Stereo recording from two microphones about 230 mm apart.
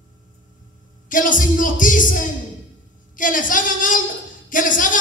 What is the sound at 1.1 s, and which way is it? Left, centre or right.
Speech, left.